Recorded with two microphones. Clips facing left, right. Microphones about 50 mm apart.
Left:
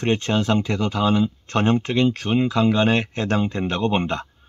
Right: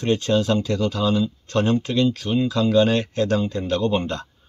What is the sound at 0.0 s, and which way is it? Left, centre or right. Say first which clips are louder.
Speech: right 1 dB; left.